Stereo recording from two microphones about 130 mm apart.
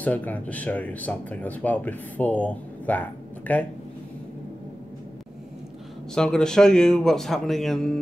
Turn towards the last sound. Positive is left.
turn(degrees=5)  # may be behind; listen again after turning